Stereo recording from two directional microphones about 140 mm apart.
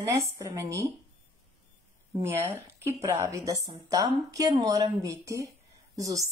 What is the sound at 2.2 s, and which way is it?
A woman's voice, 20° right (ahead or behind).